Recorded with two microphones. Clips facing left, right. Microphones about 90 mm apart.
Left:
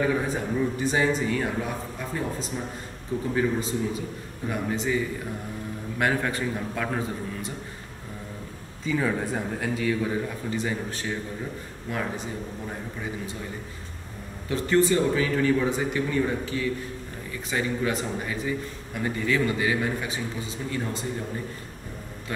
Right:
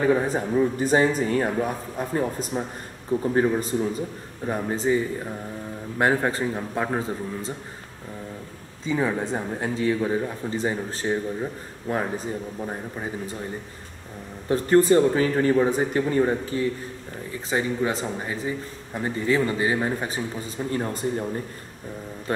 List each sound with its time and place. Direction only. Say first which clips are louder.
0.1 s a man's voice: right 5 dB; 40° right (ahead or behind); by 7.5 s 25° right (ahead or behind)
8.8 s a man's voice: right 2 dB; 20° right (ahead or behind)
14.5 s a man's voice: right 5 dB; 40° right (ahead or behind)
17.5 s a man's voice: right 2 dB; 30° right (ahead or behind); by 21.0 s 45° right (ahead or behind)